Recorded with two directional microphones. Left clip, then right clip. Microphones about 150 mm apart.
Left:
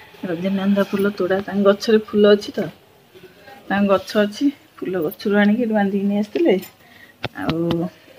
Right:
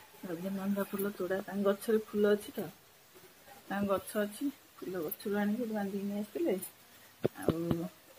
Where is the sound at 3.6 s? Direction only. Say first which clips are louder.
Left 16 dB; 5° left (ahead or behind).